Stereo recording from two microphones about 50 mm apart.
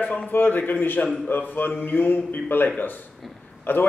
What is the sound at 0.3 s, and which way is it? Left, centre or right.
A man's voice, left.